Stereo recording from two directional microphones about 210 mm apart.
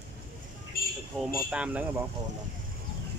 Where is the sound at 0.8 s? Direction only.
45° left (ahead or behind).